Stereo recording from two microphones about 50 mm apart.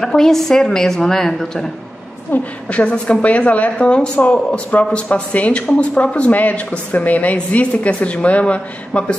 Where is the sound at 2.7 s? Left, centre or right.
Left.